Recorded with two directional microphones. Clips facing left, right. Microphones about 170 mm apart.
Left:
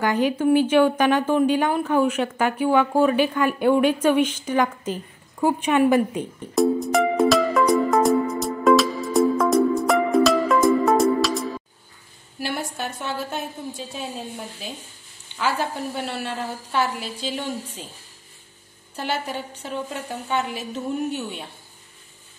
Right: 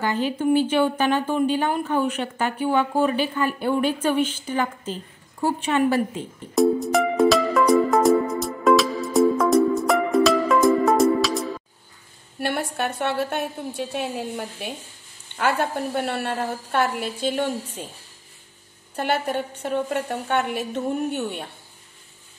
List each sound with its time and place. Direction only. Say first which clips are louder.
0.0 s speech: left 3 dB; 10° left (ahead or behind)
4.3 s a woman's voice: left 3 dB; 10° right (ahead or behind)
4.8 s a woman's voice: left 3 dB; 10° left (ahead or behind)
6.5 s music: right 1 dB; centre (ahead or behind)
12.4 s a woman's voice: right 3 dB; 55° right (ahead or behind)
18.9 s a woman's voice: right 4 dB; 55° right (ahead or behind)